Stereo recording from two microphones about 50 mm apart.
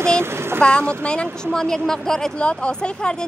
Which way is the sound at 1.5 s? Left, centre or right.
Centre.